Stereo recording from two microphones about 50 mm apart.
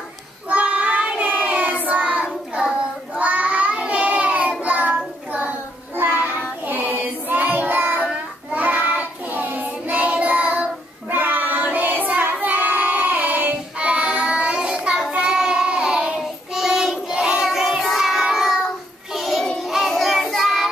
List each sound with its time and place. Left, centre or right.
0.5 s child singing: right
6.6 s child singing: right
13.7 s child singing: right
17.5 s child singing: centre
19.1 s music: centre
19.6 s child singing: centre